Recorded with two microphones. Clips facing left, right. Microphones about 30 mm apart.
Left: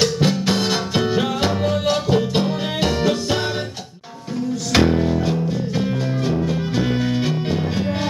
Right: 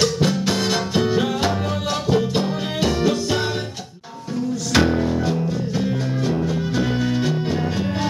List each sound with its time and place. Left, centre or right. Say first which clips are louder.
0.0 s music: left 1 dB; centre
4.7 s music: left 2 dB; centre